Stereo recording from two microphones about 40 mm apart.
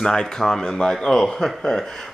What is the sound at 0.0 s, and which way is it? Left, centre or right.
Speech, centre.